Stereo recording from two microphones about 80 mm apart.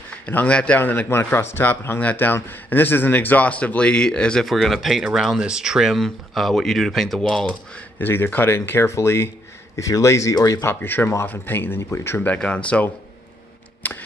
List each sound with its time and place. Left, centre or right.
0.3 s speech: centre
4.5 s speech: centre
8.0 s speech: left
10.6 s speech: left
12.2 s speech: centre
13.8 s a sound: left